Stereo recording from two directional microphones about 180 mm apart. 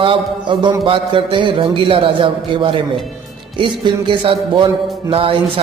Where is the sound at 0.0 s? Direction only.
30° right (ahead or behind).